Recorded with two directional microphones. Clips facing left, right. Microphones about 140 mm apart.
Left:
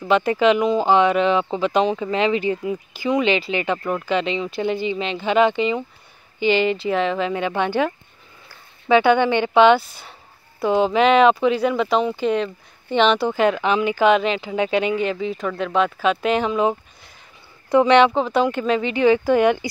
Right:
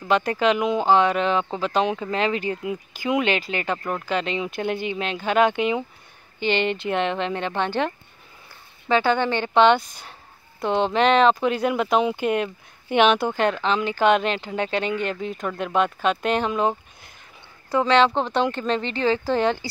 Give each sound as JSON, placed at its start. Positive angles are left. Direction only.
{"t": 0.1, "sound": "speech", "side_deg": 5}
{"t": 13.3, "sound": "speech", "side_deg": 5}
{"t": 17.6, "sound": "a woman's voice", "side_deg": 20}
{"t": 18.1, "sound": "speech", "side_deg": 5}